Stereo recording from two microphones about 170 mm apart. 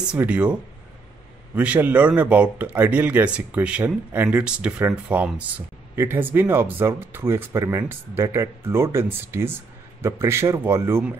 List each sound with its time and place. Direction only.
0.1 s speech: 10° right (ahead or behind)